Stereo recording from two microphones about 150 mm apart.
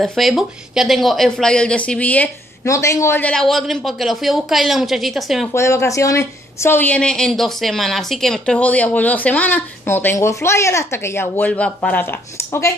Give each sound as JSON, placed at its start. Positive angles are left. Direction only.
{"t": 0.0, "sound": "speech", "side_deg": 0}
{"t": 5.5, "sound": "a woman's voice", "side_deg": 20}